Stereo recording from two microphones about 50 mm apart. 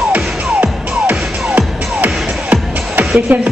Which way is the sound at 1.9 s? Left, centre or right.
Right.